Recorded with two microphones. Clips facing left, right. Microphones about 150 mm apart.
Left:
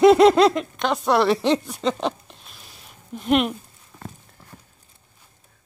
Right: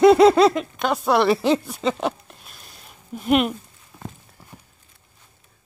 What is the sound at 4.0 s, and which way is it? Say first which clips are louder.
Clip-clop: right 1 dB; 10° right (ahead or behind).